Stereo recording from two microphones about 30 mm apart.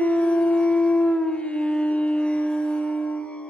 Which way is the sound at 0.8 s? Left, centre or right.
Left.